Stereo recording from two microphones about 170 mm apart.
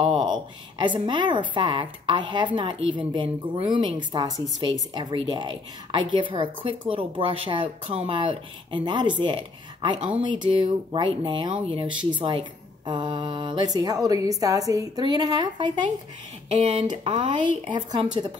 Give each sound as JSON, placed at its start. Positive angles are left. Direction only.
{"t": 0.0, "sound": "a sound", "side_deg": -30}
{"t": 1.5, "sound": "speech", "side_deg": -30}
{"t": 16.4, "sound": "speech", "side_deg": -40}